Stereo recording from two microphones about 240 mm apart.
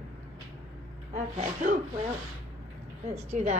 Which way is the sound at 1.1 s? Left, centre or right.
Right.